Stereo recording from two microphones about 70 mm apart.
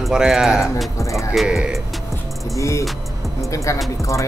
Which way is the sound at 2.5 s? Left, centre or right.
Left.